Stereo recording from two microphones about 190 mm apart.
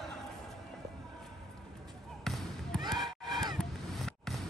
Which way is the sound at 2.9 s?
Centre (ahead or behind).